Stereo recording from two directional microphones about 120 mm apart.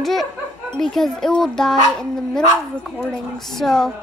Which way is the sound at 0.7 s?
5° left (ahead or behind).